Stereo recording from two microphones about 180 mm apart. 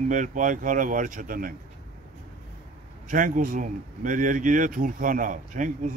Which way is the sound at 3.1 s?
45° right (ahead or behind).